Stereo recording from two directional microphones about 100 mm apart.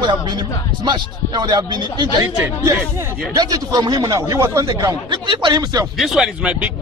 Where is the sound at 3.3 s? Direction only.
40° right (ahead or behind).